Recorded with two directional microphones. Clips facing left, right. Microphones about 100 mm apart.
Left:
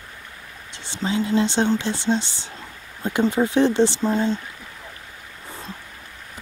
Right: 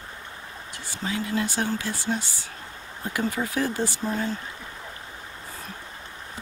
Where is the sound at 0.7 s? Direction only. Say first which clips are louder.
Left 6 dB; 25° left (ahead or behind).